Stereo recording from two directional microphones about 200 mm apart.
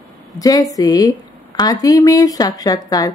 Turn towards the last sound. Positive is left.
turn(degrees=20)  # may be behind; listen again after turning